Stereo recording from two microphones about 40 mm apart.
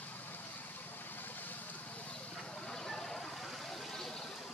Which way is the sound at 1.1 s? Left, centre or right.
Left.